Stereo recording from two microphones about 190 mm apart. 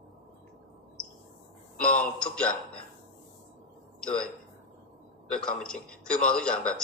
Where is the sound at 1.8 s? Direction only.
5° left (ahead or behind).